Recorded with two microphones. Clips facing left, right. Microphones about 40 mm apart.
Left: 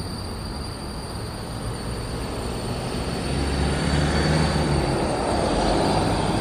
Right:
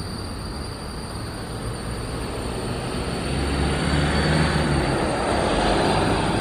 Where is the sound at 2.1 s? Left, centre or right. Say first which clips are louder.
Right 1 dB; centre.